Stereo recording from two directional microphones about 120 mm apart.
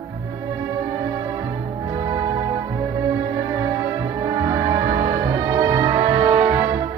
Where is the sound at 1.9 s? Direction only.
35° right (ahead or behind).